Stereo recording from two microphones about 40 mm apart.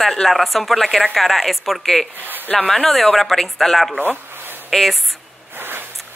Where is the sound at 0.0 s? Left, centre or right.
Centre.